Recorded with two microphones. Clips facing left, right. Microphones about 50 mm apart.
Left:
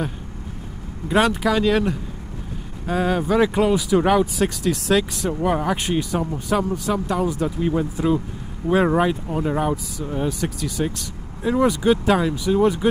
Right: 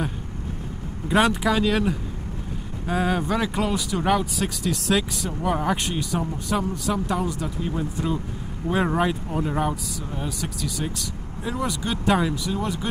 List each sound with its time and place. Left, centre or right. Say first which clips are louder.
1.0 s speech: left 2 dB; centre
12.5 s speech: left 9 dB; centre